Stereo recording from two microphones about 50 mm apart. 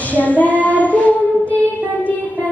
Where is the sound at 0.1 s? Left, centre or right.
Left.